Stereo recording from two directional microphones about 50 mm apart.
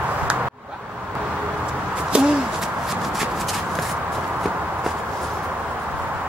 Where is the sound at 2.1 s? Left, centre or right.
Right.